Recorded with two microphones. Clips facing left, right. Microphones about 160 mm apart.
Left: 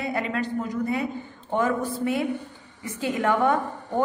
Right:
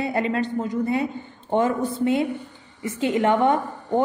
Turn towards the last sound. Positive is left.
turn(degrees=-25)  # may be behind; listen again after turning